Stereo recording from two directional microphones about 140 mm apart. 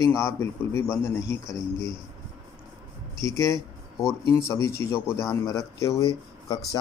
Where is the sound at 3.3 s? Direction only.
25° left (ahead or behind).